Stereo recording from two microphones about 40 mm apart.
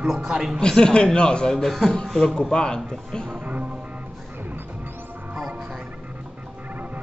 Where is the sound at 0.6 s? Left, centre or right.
Centre.